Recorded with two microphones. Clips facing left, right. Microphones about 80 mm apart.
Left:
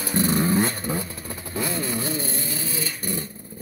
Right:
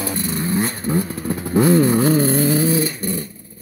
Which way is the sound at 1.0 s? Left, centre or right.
Right.